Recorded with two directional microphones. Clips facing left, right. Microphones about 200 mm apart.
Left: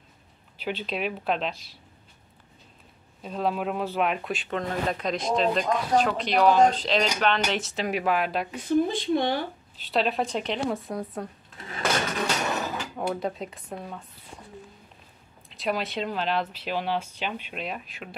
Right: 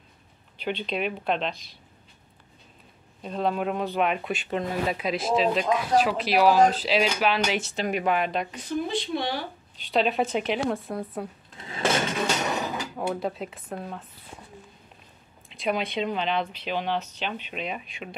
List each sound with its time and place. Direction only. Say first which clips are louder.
0.6 s speech: right 1 dB; 5° left (ahead or behind)
3.2 s speech: right 1 dB; 5° left (ahead or behind)
8.6 s speech: left 9 dB; 50° left (ahead or behind)
9.8 s speech: right 2 dB; centre (ahead or behind)
12.5 s a sound: right 1 dB; 15° right (ahead or behind)
12.9 s speech: left 1 dB; centre (ahead or behind)
15.5 s speech: right 1 dB; centre (ahead or behind)